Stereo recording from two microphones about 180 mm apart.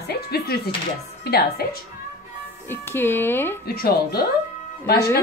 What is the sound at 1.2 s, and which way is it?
Speech, 60° left (ahead or behind).